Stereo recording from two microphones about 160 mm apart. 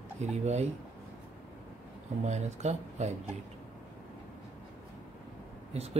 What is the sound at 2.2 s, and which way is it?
Speech, 45° right (ahead or behind).